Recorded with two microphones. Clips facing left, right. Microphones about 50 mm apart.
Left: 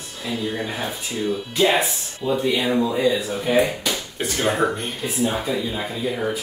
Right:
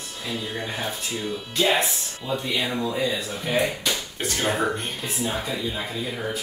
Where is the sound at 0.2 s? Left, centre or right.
Centre.